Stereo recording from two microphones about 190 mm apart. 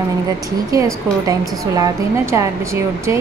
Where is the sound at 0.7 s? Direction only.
20° right (ahead or behind).